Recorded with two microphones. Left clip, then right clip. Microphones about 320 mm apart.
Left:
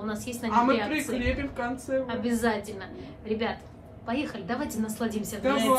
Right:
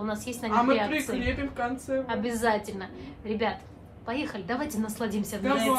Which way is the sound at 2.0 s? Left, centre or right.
Right.